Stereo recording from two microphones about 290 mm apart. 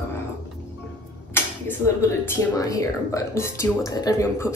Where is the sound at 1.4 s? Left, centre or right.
Centre.